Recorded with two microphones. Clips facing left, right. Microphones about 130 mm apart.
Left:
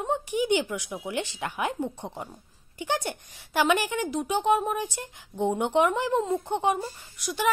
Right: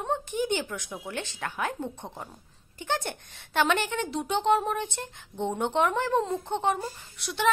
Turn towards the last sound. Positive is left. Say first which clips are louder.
# left 1 dB
turn(degrees=0)  # may be behind; listen again after turning